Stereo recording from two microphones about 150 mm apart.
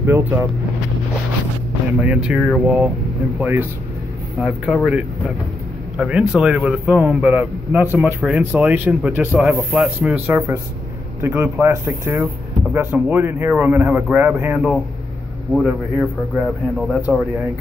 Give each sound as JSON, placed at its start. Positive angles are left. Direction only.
{"t": 0.0, "sound": "a man's voice", "side_deg": -15}
{"t": 2.0, "sound": "a man's voice", "side_deg": -5}
{"t": 5.9, "sound": "a man's voice", "side_deg": -5}